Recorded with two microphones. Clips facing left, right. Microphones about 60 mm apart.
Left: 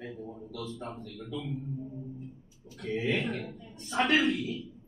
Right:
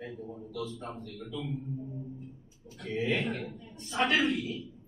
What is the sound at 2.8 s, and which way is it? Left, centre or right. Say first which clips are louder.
A man's voice: even; centre.